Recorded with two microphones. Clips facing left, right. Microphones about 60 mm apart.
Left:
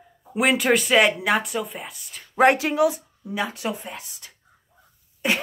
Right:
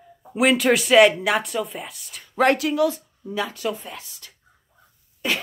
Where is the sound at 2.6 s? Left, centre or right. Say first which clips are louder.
Even; left.